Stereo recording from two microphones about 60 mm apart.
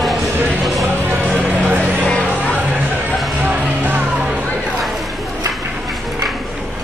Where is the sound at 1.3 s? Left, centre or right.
Right.